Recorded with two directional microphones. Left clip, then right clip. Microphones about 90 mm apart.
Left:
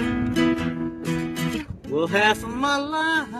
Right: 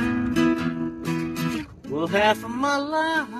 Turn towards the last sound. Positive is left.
turn(degrees=0)  # may be behind; listen again after turning